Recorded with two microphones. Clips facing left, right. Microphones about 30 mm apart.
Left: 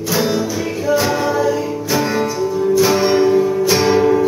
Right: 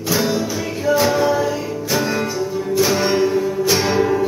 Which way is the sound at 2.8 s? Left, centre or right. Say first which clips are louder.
Left 2 dB; centre.